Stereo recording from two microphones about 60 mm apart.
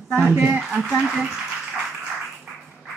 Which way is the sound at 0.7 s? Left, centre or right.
Centre.